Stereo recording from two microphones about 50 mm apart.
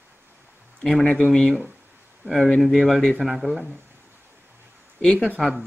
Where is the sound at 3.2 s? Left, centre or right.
Centre.